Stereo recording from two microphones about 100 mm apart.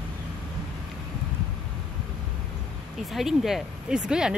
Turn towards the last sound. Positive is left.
turn(degrees=-5)  # may be behind; listen again after turning